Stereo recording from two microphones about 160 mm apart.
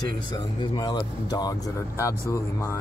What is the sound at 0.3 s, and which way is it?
Speech, 25° left (ahead or behind).